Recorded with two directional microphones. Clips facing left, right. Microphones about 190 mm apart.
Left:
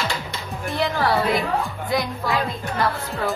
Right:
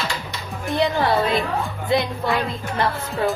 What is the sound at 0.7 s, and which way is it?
Speech, 20° right (ahead or behind).